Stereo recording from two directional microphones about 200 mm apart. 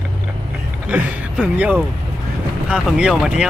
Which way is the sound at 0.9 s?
5° right (ahead or behind).